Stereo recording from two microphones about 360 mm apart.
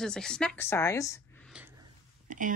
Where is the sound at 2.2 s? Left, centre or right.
Right.